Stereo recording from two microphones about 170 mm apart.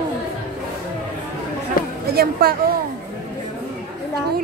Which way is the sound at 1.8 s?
60° left (ahead or behind).